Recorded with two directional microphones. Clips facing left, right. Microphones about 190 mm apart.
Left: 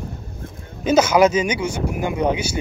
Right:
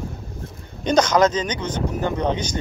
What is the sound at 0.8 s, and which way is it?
Speech, 5° left (ahead or behind).